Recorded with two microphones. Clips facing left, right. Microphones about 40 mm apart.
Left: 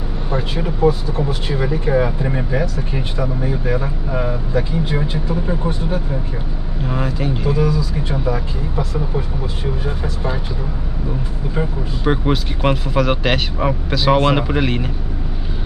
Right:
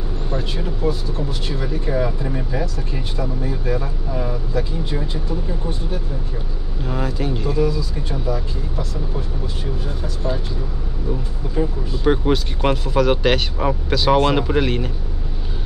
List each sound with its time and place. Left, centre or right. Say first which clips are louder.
0.3 s speech: left 5 dB; left
6.8 s speech: left 2 dB; centre
7.5 s speech: left 2 dB; left
11.4 s speech: right 1 dB; centre